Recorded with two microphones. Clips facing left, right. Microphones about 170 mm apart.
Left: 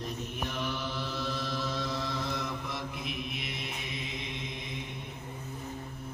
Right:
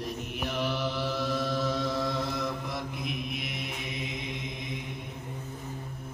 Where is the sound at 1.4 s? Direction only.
50° right (ahead or behind).